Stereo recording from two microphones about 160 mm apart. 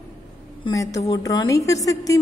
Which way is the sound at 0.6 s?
20° left (ahead or behind).